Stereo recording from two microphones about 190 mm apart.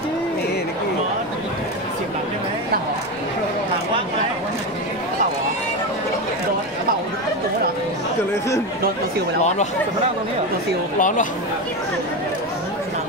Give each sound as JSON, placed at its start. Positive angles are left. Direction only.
{"t": 11.0, "sound": "speech", "side_deg": 45}